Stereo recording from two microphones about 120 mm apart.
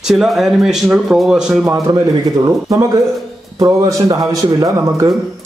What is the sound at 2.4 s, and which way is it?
Speech, 25° right (ahead or behind).